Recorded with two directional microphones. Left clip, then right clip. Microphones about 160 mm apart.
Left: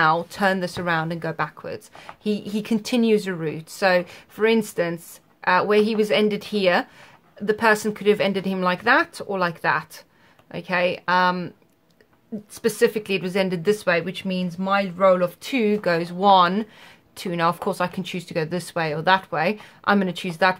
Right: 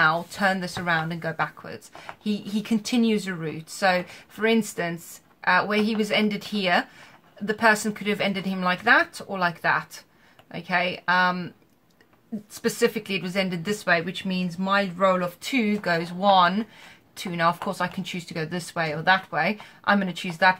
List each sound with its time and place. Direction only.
0.0 s speech: 65° left (ahead or behind)
12.6 s speech: 65° left (ahead or behind)